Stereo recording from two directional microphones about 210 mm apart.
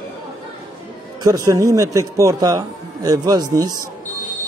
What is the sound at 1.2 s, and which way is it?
A man's voice, 15° right (ahead or behind).